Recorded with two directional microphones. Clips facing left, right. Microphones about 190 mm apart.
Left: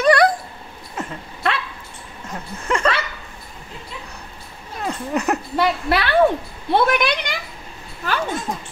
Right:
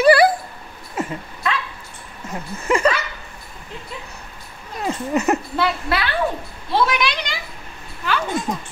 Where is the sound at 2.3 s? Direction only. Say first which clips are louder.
Right 3 dB; 10° right (ahead or behind).